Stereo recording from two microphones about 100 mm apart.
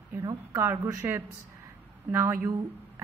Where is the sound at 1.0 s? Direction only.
25° right (ahead or behind).